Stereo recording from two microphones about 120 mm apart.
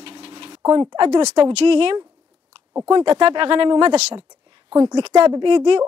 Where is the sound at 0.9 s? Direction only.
50° right (ahead or behind).